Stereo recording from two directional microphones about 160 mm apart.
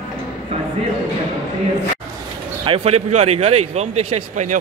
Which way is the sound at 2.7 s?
40° right (ahead or behind).